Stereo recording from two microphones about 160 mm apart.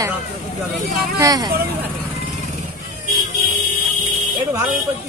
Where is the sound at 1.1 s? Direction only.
20° right (ahead or behind).